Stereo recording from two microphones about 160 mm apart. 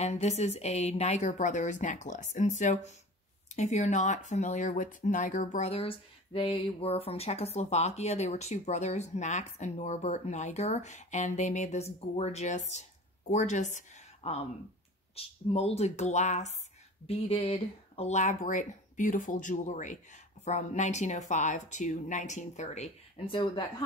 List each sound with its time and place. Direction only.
0.0 s speech: 45° left (ahead or behind)
23.2 s speech: 30° left (ahead or behind)